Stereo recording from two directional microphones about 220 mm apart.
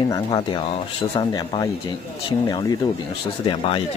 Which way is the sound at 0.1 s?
20° left (ahead or behind).